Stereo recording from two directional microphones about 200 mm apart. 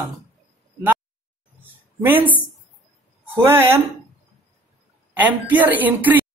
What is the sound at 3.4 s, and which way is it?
Speech, 10° right (ahead or behind).